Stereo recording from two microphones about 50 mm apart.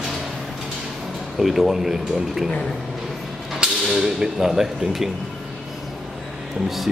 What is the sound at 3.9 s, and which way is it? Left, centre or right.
Speech, centre.